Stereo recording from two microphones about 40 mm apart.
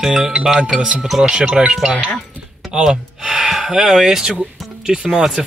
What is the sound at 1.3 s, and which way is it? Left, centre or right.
Speech, right.